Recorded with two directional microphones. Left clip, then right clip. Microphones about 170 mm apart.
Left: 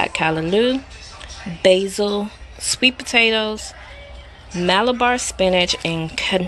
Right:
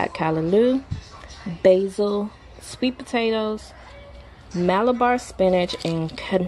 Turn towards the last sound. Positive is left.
turn(degrees=-20)  # may be behind; listen again after turning